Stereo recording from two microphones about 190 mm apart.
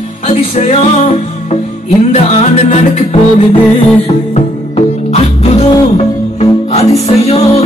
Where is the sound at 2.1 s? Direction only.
35° left (ahead or behind).